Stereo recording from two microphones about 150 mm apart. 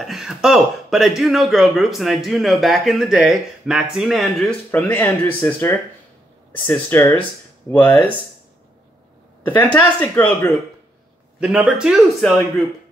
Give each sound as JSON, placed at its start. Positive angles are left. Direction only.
{"t": 0.0, "sound": "speech", "side_deg": 0}
{"t": 4.6, "sound": "speech", "side_deg": 15}
{"t": 9.7, "sound": "speech", "side_deg": 10}
{"t": 11.3, "sound": "speech", "side_deg": -5}